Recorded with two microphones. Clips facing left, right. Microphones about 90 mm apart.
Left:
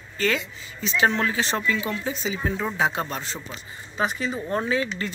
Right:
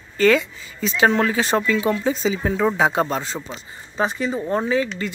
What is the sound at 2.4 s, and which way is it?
Speech, 65° right (ahead or behind).